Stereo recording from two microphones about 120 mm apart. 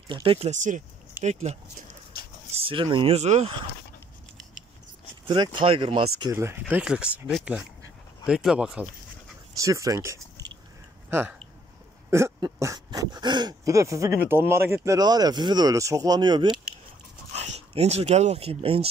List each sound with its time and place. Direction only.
0.1 s speech: 50° right (ahead or behind)
0.5 s speech: 90° right
1.2 s speech: 70° right (ahead or behind)
2.6 s speech: 45° right (ahead or behind); by 3.5 s 65° right (ahead or behind)
5.3 s speech: 45° right (ahead or behind)
6.3 s speech: 20° right (ahead or behind)
6.7 s speech: 10° right (ahead or behind)
9.6 s speech: 30° right (ahead or behind)
11.1 s speech: 15° right (ahead or behind)
12.5 s dog: 25° right (ahead or behind)
13.7 s speech: 25° right (ahead or behind)
15.0 s speech: 35° right (ahead or behind)
17.3 s speech: 65° right (ahead or behind)